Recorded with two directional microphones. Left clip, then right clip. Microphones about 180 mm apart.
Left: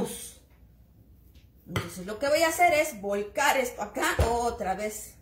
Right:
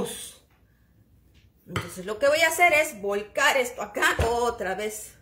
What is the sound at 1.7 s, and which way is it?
Speech, 45° right (ahead or behind).